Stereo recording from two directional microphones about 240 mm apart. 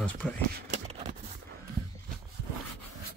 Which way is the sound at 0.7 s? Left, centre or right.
Right.